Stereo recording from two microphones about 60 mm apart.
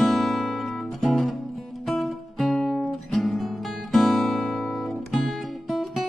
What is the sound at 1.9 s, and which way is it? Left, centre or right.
Music, centre.